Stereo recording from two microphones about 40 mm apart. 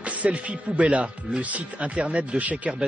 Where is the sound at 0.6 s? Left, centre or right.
Right.